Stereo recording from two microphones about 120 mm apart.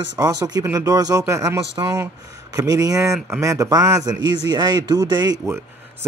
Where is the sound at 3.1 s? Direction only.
Centre (ahead or behind).